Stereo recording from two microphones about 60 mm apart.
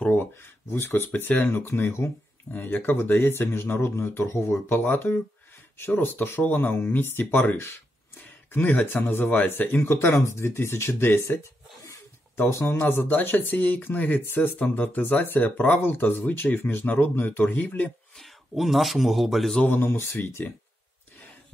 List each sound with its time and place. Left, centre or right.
0.1 s a sound: left
1.4 s speech: left
12.4 s speech: left
18.1 s a man's voice: centre
19.6 s speech: left